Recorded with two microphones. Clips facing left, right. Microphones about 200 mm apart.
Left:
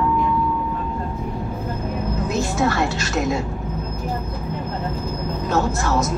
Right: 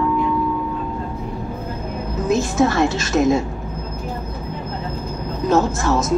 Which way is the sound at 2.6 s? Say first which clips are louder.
Right 4 dB; 20° right (ahead or behind).